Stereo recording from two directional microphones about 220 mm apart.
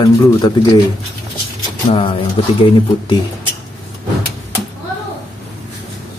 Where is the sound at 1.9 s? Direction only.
25° left (ahead or behind).